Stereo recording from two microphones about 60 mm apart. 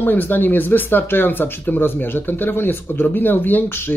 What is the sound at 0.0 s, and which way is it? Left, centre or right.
Speech, left.